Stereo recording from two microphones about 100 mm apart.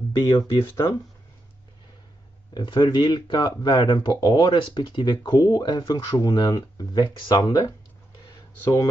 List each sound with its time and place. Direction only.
0.2 s speech: 40° left (ahead or behind)
2.5 s speech: 50° left (ahead or behind)